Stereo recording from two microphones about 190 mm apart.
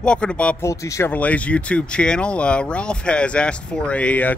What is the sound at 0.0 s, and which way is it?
Speech, 5° left (ahead or behind).